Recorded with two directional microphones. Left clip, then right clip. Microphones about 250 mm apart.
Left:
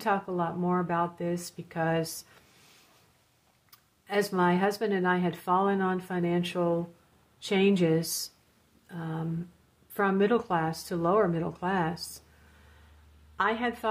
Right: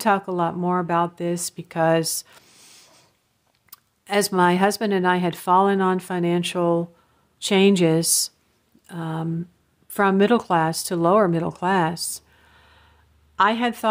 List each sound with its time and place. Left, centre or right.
0.0 s speech: right
13.4 s speech: right